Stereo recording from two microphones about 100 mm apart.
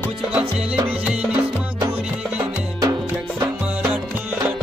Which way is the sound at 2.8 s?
35° right (ahead or behind).